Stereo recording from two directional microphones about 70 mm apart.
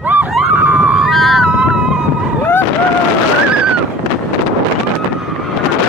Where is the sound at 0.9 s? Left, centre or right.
Centre.